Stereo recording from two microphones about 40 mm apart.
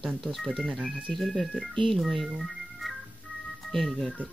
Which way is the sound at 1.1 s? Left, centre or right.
Centre.